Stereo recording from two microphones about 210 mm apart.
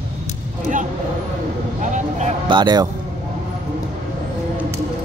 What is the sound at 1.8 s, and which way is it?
Vehicle, 35° right (ahead or behind).